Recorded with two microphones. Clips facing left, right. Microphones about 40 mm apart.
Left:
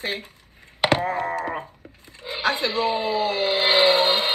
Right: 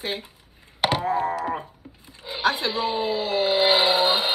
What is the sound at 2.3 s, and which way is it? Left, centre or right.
Speech, left.